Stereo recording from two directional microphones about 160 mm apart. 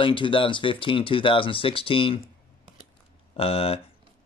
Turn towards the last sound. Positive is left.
turn(degrees=35)  # may be behind; listen again after turning